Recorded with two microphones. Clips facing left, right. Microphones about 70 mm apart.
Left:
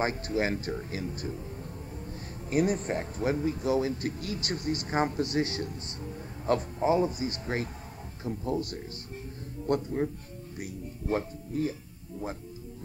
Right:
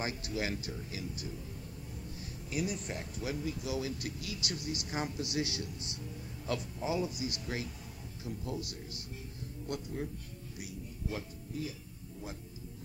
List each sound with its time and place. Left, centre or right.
0.0 s a man's voice: left
2.5 s a man's voice: left